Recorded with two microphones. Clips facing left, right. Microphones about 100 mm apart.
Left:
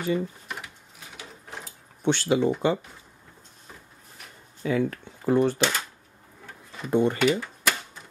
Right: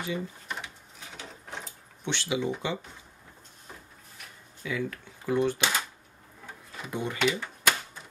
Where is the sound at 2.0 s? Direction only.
45° left (ahead or behind).